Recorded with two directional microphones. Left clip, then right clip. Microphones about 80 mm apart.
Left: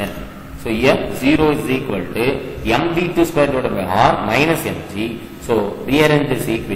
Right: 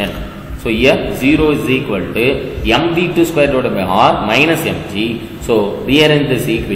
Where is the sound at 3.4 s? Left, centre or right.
Centre.